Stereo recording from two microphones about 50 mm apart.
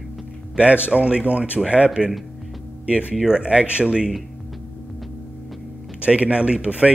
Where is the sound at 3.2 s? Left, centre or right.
Centre.